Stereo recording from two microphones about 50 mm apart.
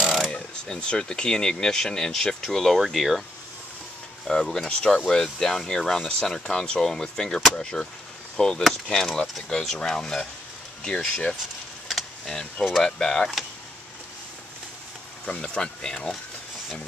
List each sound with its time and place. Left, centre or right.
0.3 s speech: centre
4.3 s speech: centre
11.9 s a sound: centre
12.8 s speech: centre
15.2 s speech: centre